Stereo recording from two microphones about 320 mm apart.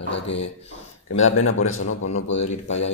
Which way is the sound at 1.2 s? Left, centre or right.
Left.